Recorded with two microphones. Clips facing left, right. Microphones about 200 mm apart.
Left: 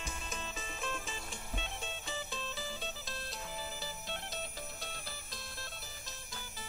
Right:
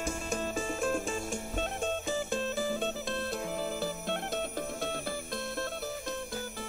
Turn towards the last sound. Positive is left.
turn(degrees=-60)  # may be behind; listen again after turning